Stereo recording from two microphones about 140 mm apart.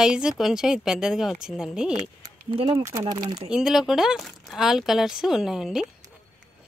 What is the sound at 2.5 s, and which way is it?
Speech, 40° right (ahead or behind).